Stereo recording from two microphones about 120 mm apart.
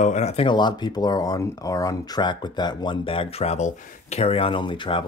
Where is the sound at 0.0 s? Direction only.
75° left (ahead or behind).